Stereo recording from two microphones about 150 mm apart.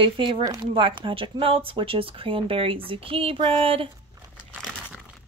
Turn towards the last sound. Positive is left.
turn(degrees=-40)  # may be behind; listen again after turning